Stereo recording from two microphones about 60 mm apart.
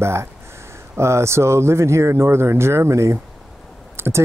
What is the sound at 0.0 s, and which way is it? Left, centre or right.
Speech, right.